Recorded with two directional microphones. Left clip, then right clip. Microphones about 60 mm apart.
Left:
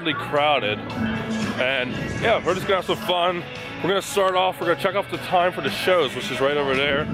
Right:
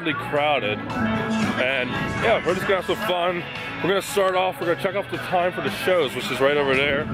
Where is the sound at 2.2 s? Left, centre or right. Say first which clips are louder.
Even; centre.